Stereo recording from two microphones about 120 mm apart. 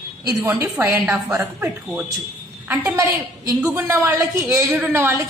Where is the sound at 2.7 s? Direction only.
25° right (ahead or behind).